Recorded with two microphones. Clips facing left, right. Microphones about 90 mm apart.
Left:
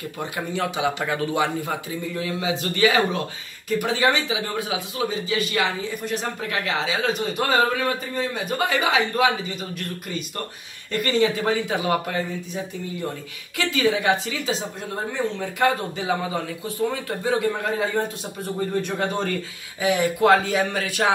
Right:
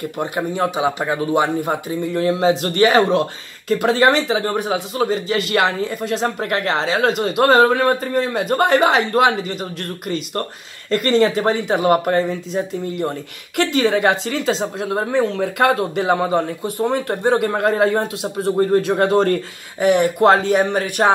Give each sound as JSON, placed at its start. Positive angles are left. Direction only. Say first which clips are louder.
{"t": 0.5, "sound": "a man's voice", "louder": "right 3 dB", "side_deg": -35}
{"t": 1.3, "sound": "a man's voice", "louder": "right 6 dB", "side_deg": -45}
{"t": 2.4, "sound": "speech", "louder": "right 5 dB", "side_deg": -55}
{"t": 5.9, "sound": "speech", "louder": "right 6 dB", "side_deg": -90}
{"t": 7.6, "sound": "speech", "louder": "right 8 dB", "side_deg": -55}
{"t": 8.3, "sound": "speech", "louder": "right 8 dB", "side_deg": -80}
{"t": 13.6, "sound": "speech", "louder": "right 6 dB", "side_deg": -65}
{"t": 18.0, "sound": "a man's voice", "louder": "right 8 dB", "side_deg": -90}
{"t": 19.8, "sound": "speech", "louder": "right 6 dB", "side_deg": -65}
{"t": 21.0, "sound": "a man's voice", "louder": "right 6 dB", "side_deg": -35}